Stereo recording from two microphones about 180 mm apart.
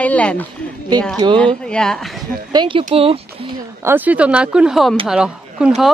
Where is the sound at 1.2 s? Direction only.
25° right (ahead or behind).